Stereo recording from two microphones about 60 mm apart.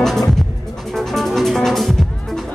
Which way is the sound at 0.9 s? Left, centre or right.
Centre.